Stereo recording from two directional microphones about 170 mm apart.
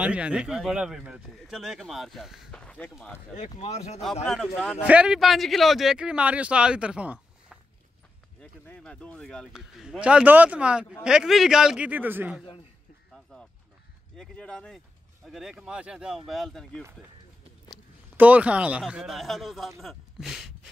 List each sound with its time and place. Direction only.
0.0 s speech: 5° right (ahead or behind); by 3.2 s 10° left (ahead or behind)
3.3 s speech: 45° left (ahead or behind)
4.0 s speech: centre (ahead or behind)
8.4 s speech: 10° left (ahead or behind); by 12.4 s 10° right (ahead or behind)
13.1 s music: centre (ahead or behind)
14.1 s speech: 5° left (ahead or behind)
17.6 s speech: 10° right (ahead or behind)